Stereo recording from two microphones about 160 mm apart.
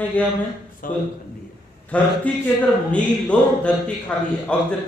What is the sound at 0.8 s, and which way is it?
Speech, 60° left (ahead or behind).